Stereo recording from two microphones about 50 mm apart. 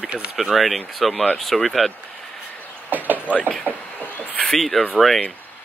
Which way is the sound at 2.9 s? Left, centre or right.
Right.